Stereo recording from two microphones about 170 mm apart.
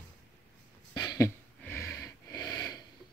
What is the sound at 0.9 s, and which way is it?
Wheeze, 25° left (ahead or behind).